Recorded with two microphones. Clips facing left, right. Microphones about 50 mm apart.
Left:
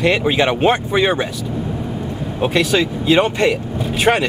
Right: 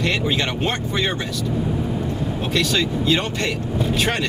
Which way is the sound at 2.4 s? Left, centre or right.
Centre.